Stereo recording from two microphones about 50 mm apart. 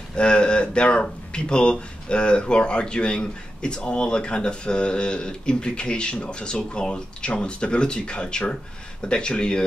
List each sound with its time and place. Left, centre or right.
0.1 s speech: centre